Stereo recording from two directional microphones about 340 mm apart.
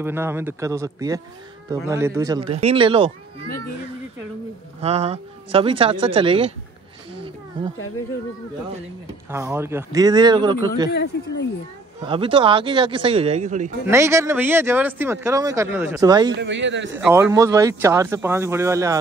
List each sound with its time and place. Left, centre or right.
0.0 s speech: centre
4.8 s speech: centre
9.3 s speech: centre
10.9 s speech: left
12.0 s speech: centre
13.8 s speech: centre
16.3 s speech: right
16.9 s speech: centre